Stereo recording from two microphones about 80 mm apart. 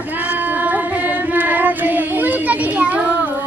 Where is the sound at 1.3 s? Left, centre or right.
Right.